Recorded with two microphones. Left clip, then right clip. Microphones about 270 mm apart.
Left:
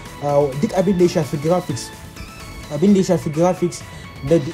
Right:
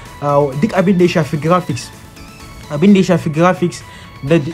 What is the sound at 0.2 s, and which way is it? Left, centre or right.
Speech, centre.